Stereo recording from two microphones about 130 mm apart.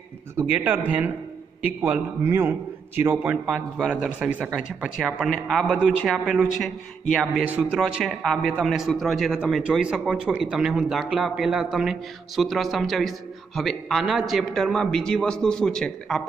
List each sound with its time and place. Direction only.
0.4 s a man's voice: 10° right (ahead or behind); by 16.2 s 5° left (ahead or behind)